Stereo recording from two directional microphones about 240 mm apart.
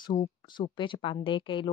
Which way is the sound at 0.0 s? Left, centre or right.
Centre.